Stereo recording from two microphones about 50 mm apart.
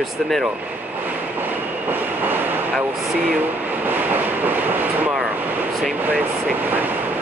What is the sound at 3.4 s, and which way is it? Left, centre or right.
Train, right.